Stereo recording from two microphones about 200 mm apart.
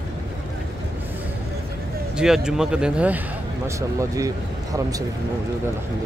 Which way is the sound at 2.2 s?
5° right (ahead or behind).